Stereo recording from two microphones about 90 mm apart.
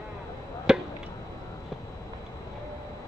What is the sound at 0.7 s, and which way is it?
Chop, 10° right (ahead or behind).